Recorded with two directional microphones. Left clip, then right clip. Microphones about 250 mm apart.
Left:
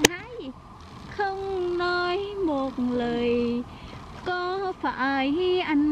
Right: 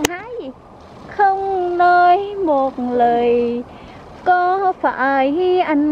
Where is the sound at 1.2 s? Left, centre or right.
Centre.